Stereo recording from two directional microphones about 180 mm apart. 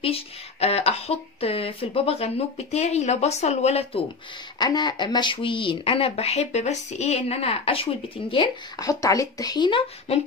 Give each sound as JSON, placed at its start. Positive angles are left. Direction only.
{"t": 0.0, "sound": "speech", "side_deg": 35}
{"t": 4.6, "sound": "speech", "side_deg": 25}